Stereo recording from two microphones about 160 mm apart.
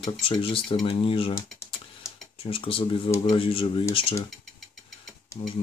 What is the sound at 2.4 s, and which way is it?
Speech, 35° left (ahead or behind).